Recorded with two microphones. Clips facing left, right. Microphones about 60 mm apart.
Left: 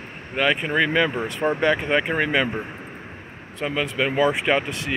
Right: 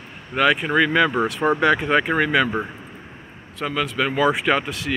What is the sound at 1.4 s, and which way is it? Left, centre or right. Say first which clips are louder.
Speech: right 2 dB; centre.